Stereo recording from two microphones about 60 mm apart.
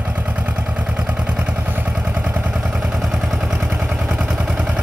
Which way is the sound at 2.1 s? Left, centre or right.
Right.